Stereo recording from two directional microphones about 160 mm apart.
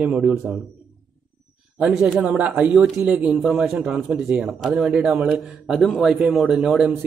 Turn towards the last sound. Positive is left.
turn(degrees=-5)  # may be behind; listen again after turning